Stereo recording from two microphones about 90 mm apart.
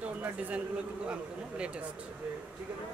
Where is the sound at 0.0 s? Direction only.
15° right (ahead or behind).